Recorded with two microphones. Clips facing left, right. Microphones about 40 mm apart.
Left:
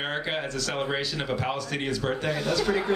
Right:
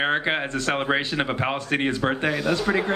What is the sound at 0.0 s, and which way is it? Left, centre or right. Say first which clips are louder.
A woman's voice: right 6 dB; right.